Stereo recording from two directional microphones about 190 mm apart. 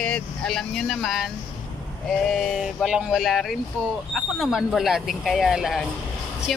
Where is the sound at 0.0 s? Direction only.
5° left (ahead or behind).